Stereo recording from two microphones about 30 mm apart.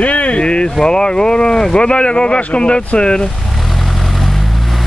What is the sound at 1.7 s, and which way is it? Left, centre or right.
Speech, left.